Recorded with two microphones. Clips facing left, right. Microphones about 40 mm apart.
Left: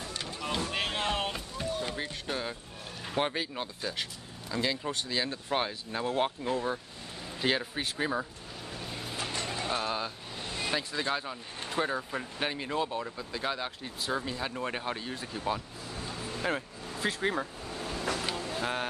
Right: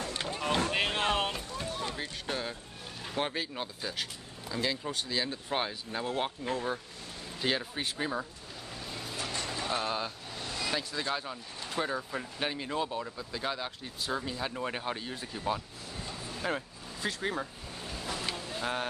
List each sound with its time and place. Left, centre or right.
0.2 s a sound: right
0.7 s music: centre
1.3 s boat: centre
2.2 s speech: centre
9.1 s vehicle: left
9.7 s speech: centre
10.4 s vehicle: left
10.7 s speech: centre
18.2 s a sound: centre